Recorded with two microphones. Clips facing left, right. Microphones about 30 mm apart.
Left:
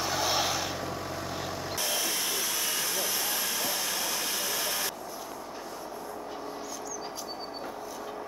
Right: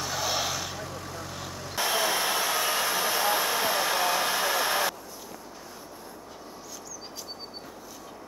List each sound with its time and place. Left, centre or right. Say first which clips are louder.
0.0 s vehicle: left 1 dB; centre
1.8 s hair dryer: right 7 dB; right